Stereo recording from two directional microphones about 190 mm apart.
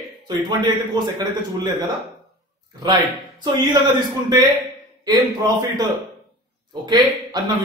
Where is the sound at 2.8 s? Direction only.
25° right (ahead or behind).